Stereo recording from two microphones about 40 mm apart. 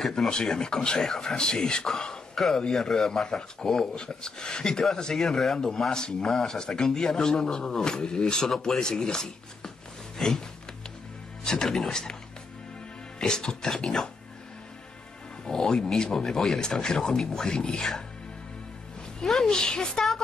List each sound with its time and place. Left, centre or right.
0.3 s speech: centre
1.3 s speech: centre
1.9 s a sound: centre
2.7 s speech: centre
10.1 s a sound: centre
11.4 s speech: centre
13.2 s speech: centre
15.4 s speech: centre
19.2 s speech: centre
19.5 s speech: centre